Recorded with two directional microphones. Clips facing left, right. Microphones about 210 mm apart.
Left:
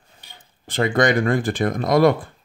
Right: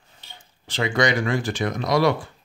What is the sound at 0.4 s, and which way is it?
Speech, 55° left (ahead or behind).